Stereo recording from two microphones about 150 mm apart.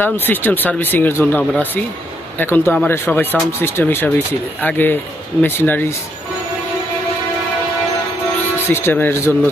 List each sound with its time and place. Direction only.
0.0 s speech: 15° left (ahead or behind)
8.6 s speech: 15° left (ahead or behind)